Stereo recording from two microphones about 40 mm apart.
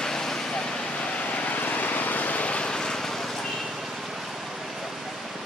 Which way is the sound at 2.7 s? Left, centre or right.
Centre.